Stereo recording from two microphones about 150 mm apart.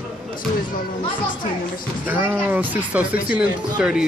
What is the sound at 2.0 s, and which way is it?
Speech, 10° right (ahead or behind).